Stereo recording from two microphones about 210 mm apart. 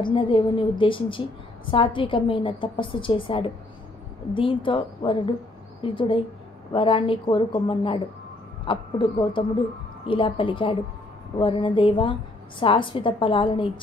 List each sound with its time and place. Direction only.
0.0 s a woman's voice: 25° left (ahead or behind)